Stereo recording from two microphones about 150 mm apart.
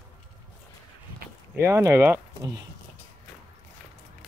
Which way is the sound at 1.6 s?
20° right (ahead or behind).